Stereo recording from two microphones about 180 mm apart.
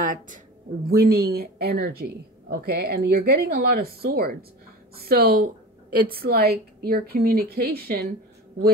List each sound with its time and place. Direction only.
0.0 s speech: 45° right (ahead or behind)
0.8 s a woman's voice: 55° right (ahead or behind)